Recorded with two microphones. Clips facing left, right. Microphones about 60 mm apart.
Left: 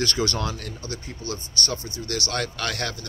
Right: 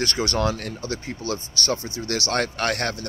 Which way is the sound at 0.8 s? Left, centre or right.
Right.